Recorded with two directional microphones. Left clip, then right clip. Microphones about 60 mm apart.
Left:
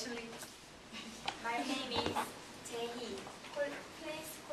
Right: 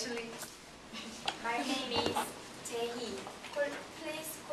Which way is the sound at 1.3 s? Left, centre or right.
Right.